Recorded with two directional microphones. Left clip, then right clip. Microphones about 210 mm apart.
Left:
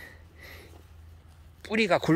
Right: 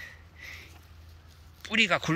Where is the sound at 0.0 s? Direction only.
25° left (ahead or behind).